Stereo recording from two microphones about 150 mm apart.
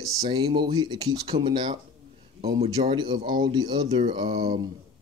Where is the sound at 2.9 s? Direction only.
30° right (ahead or behind).